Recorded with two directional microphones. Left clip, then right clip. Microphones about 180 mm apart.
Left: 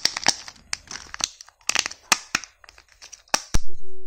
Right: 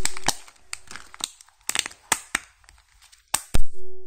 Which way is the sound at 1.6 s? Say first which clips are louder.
Left 4 dB; 10° left (ahead or behind).